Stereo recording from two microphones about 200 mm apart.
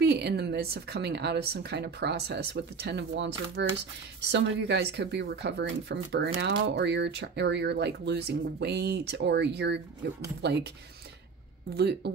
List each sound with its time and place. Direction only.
0.0 s speech: 55° right (ahead or behind)
11.7 s speech: 55° right (ahead or behind)